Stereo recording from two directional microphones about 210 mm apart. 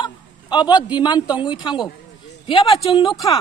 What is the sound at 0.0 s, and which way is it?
A man's voice, 20° left (ahead or behind).